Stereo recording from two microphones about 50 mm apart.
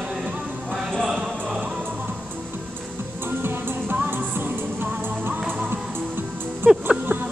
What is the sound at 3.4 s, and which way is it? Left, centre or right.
Music, right.